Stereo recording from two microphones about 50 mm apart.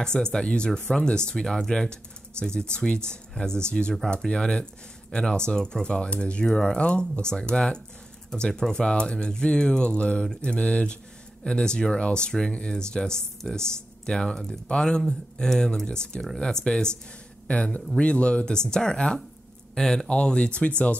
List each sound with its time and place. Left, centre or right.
0.0 s speech: centre
17.9 s speech: left